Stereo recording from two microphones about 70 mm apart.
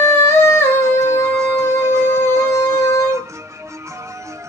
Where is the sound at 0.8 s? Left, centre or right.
Right.